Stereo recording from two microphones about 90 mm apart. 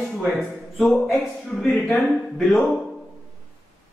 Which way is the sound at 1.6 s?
10° left (ahead or behind).